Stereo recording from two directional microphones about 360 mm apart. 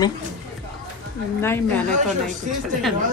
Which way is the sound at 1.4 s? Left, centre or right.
Centre.